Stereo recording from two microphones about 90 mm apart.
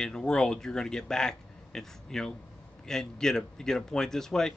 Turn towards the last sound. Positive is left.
turn(degrees=5)  # may be behind; listen again after turning